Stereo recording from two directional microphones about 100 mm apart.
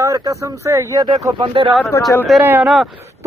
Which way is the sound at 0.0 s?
35° right (ahead or behind).